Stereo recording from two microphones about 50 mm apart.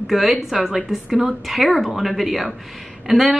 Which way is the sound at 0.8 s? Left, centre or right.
Centre.